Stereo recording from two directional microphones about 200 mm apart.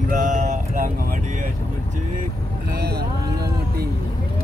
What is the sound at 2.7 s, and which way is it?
Speech, 55° right (ahead or behind).